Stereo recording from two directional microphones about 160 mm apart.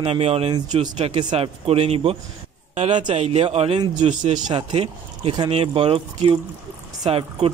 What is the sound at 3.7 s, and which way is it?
A man's voice, 30° right (ahead or behind).